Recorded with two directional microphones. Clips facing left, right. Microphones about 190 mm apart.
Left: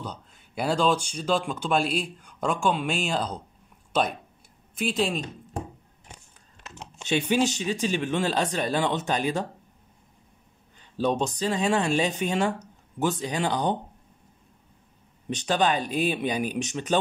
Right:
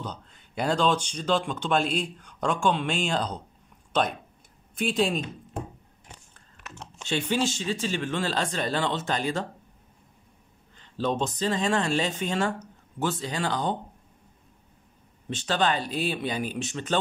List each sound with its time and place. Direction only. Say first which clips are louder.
0.0 s speech: even; 5° left (ahead or behind)
4.7 s speech: right 1 dB; centre (ahead or behind)
6.3 s speech: right 1 dB; 15° left (ahead or behind)
10.8 s speech: left 2 dB; 15° left (ahead or behind)
15.2 s speech: left 2 dB; 15° left (ahead or behind)